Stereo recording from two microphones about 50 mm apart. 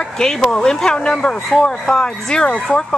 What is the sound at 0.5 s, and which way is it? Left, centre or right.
A woman's voice, centre.